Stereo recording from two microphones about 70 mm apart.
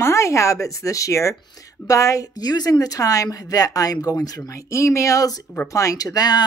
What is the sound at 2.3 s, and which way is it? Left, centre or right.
Speech, left.